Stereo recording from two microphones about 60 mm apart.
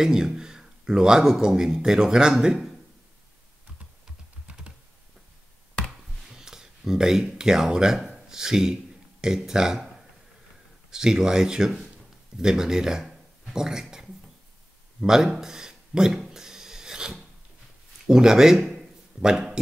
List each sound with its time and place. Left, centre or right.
0.0 s speech: centre
4.5 s computer keyboard: right
6.3 s speech: centre
15.0 s a sound: centre
18.0 s speech: centre